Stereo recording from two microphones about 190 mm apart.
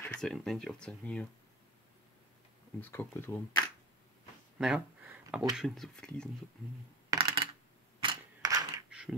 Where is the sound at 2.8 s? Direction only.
10° left (ahead or behind).